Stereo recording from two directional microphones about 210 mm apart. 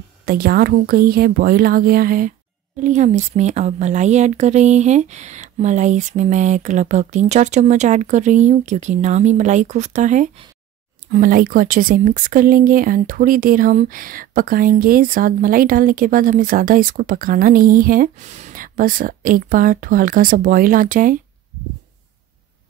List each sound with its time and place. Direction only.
0.2 s speech: 45° right (ahead or behind)